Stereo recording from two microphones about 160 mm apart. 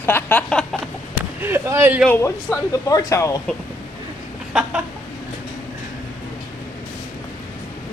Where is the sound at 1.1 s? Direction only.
15° right (ahead or behind).